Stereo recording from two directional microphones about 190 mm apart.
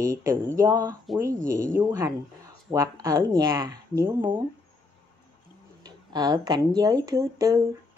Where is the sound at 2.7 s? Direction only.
20° right (ahead or behind).